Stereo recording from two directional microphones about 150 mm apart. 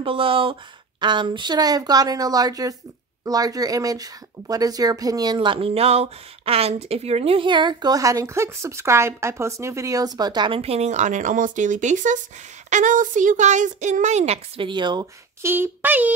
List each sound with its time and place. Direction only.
0.0 s speech: 35° right (ahead or behind)
14.7 s speech: 30° right (ahead or behind)
15.4 s speech: 15° right (ahead or behind)